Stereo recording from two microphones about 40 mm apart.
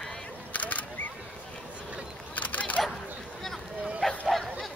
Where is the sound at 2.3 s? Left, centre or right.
Left.